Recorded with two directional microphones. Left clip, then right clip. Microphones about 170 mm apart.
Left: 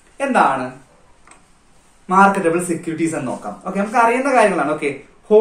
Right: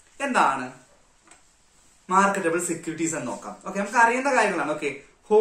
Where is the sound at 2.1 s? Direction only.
15° right (ahead or behind).